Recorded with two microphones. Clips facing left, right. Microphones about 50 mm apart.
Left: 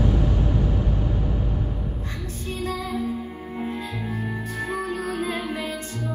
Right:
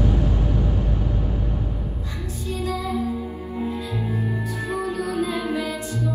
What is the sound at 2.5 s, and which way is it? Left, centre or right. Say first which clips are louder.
Music: right 2 dB; left.